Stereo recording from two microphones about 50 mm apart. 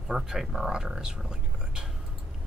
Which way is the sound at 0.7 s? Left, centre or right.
Centre.